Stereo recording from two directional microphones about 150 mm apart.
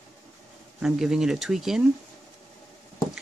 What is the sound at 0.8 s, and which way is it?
Speech, 5° right (ahead or behind).